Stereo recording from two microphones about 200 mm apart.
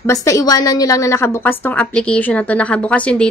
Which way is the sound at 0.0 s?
15° left (ahead or behind).